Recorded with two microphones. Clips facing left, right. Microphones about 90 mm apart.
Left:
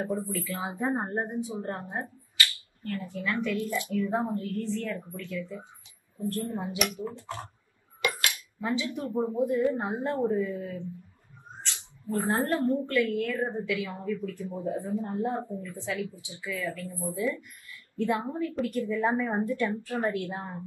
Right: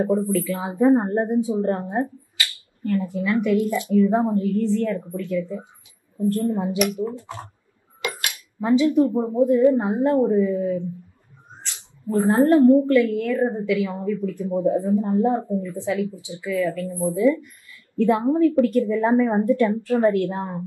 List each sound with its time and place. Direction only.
0.5 s a woman's voice: 20° right (ahead or behind)
2.8 s a woman's voice: 20° right (ahead or behind)